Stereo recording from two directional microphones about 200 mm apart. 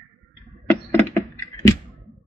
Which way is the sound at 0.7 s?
10° left (ahead or behind).